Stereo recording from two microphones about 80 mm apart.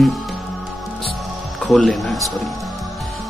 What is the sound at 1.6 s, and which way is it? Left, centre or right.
Speech, centre.